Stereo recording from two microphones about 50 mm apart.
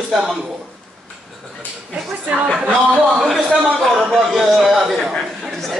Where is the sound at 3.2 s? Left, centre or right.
Centre.